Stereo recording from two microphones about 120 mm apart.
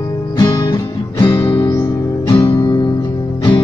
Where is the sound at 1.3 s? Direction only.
35° left (ahead or behind).